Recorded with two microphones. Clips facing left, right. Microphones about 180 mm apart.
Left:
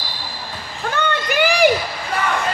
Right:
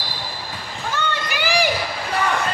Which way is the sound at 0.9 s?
55° left (ahead or behind).